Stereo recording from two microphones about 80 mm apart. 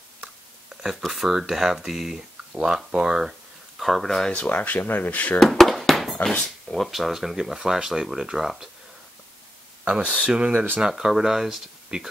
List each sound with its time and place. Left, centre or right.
0.8 s speech: centre; by 5.4 s left
5.4 s a sound: centre
6.3 s speech: centre
9.8 s speech: centre
10.5 s speech: right
10.8 s speech: centre